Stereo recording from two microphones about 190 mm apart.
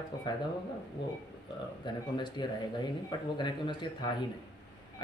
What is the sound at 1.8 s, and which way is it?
Speech, 25° left (ahead or behind).